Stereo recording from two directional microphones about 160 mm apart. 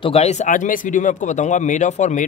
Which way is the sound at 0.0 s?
40° left (ahead or behind).